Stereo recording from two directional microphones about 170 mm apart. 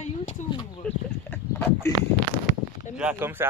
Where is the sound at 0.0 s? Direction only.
45° left (ahead or behind).